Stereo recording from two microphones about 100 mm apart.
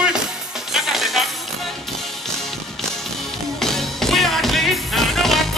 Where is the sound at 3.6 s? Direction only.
5° left (ahead or behind).